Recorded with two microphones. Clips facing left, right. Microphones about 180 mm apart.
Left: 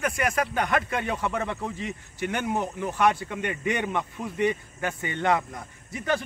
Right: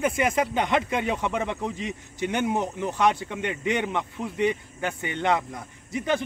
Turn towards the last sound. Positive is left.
turn(degrees=-15)  # may be behind; listen again after turning